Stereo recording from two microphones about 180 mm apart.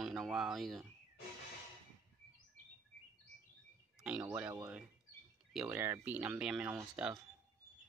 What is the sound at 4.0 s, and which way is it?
Speech, 5° right (ahead or behind).